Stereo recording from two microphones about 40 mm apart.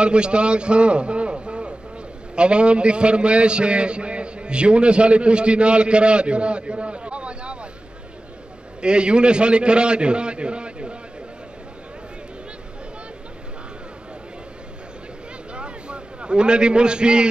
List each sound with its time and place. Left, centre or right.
0.0 s a man's voice: right
8.8 s a man's voice: right
15.5 s a sound: right